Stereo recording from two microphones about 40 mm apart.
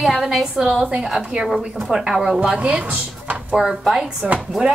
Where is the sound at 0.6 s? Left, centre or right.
Centre.